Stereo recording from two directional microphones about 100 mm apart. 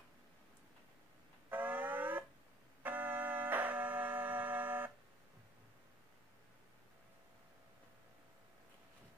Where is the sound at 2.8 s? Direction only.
20° right (ahead or behind).